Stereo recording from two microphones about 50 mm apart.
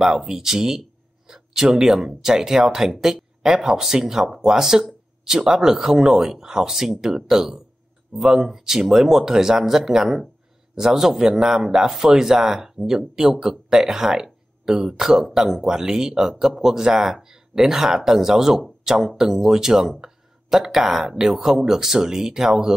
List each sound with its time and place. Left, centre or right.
0.0 s speech: centre